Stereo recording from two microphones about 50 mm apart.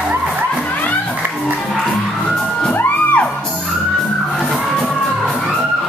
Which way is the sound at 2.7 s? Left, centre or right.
Left.